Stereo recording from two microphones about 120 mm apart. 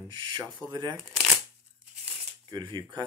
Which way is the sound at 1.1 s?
Centre (ahead or behind).